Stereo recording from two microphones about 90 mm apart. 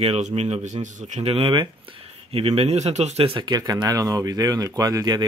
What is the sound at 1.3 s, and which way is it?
Speech, 75° right (ahead or behind).